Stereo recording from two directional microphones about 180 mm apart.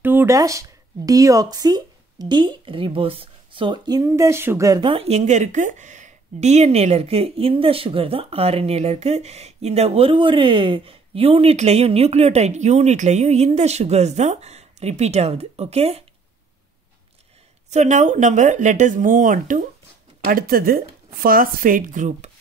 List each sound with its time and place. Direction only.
0.0 s speech: 10° right (ahead or behind); by 16.0 s 35° right (ahead or behind)
17.6 s speech: 40° right (ahead or behind)